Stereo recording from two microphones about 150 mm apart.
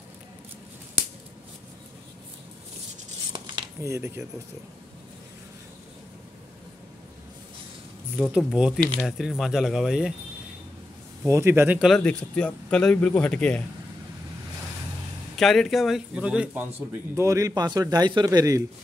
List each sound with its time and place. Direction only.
3.3 s a sound: 30° right (ahead or behind)
3.9 s speech: 15° right (ahead or behind)
8.4 s speech: centre (ahead or behind)
11.2 s speech: 20° right (ahead or behind)
11.8 s speech: 5° left (ahead or behind)
15.3 s speech: centre (ahead or behind)
17.1 s speech: 20° right (ahead or behind)